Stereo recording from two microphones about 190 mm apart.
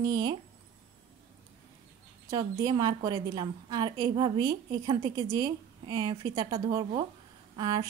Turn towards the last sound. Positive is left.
turn(degrees=-20)  # may be behind; listen again after turning